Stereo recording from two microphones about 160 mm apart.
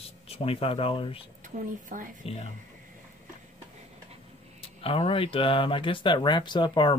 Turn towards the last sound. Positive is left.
turn(degrees=30)  # may be behind; listen again after turning